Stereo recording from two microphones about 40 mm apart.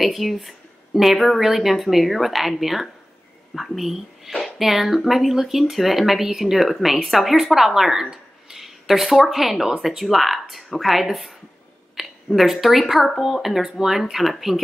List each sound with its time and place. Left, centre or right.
0.0 s speech: centre